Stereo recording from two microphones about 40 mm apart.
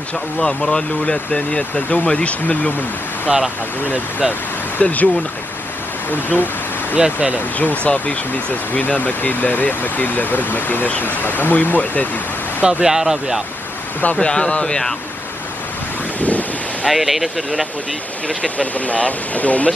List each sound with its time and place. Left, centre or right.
0.4 s speech: centre; by 2.7 s left
3.3 s speech: centre
4.8 s speech: left
6.0 s speech: left
7.0 s speech: right
7.3 s speech: left
12.6 s speech: centre
14.2 s speech: left
16.2 s waves: left
16.8 s speech: centre
18.4 s speech: left